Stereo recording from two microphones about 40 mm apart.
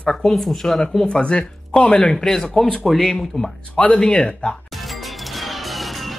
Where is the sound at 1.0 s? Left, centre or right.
Left; by 3.1 s centre.